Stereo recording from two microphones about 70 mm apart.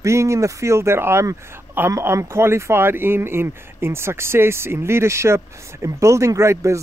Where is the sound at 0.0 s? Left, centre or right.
Right.